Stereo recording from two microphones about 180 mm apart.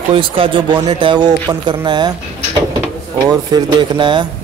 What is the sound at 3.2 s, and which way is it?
A man's voice, 20° right (ahead or behind).